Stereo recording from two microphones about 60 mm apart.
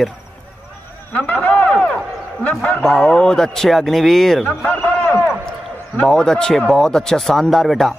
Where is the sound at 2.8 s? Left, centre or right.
Centre.